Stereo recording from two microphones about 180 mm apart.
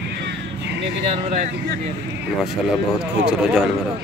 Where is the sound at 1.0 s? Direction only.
35° right (ahead or behind).